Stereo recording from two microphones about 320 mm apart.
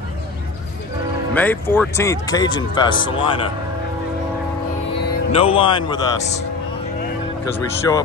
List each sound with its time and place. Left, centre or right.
1.3 s speech: centre
5.3 s speech: centre